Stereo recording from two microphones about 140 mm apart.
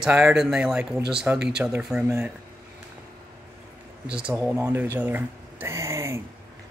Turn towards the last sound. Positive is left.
turn(degrees=-20)  # may be behind; listen again after turning